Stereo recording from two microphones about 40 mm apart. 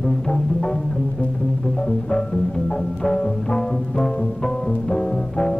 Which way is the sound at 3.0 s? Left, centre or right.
Centre.